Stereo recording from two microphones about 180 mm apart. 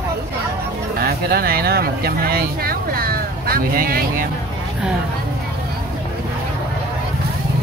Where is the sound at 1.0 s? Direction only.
60° right (ahead or behind).